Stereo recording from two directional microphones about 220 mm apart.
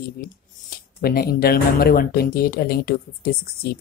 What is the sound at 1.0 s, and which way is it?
Speech, 45° left (ahead or behind).